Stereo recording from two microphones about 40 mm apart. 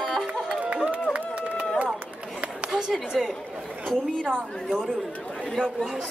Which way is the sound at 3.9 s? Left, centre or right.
Centre.